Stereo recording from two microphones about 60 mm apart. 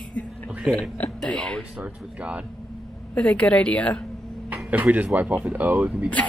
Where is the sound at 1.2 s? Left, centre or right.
Left.